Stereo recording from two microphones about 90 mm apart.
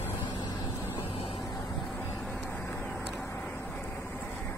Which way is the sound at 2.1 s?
10° left (ahead or behind).